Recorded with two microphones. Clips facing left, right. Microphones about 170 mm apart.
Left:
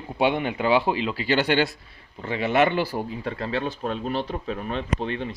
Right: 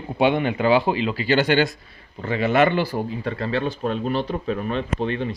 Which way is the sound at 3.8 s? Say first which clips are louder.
Right 4 dB; 50° right (ahead or behind).